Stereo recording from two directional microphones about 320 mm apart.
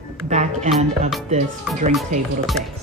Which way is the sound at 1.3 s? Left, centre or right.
Right.